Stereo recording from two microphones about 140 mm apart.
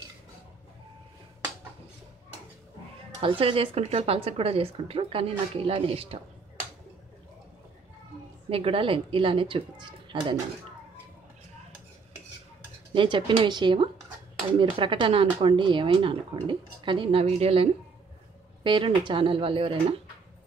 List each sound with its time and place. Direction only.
3.2 s speech: 40° right (ahead or behind)
8.5 s speech: 45° right (ahead or behind)
12.9 s speech: 35° right (ahead or behind)